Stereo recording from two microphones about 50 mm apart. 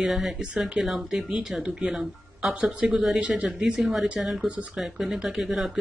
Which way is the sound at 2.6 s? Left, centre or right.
Right.